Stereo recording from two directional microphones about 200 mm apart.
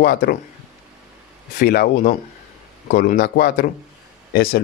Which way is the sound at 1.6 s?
45° left (ahead or behind).